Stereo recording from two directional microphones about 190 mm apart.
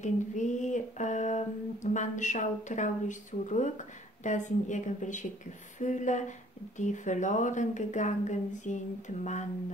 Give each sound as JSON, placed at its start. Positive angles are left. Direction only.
{"t": 0.0, "sound": "speech", "side_deg": 40}